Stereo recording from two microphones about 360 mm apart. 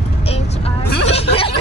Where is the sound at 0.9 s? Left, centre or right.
Left.